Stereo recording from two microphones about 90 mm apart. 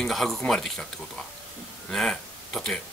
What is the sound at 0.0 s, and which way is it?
A man's voice, centre (ahead or behind).